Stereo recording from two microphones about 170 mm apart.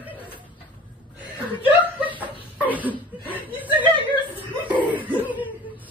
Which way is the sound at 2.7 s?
10° right (ahead or behind).